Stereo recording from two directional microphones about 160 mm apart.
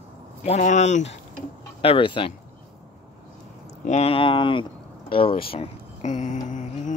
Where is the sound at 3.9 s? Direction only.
40° left (ahead or behind).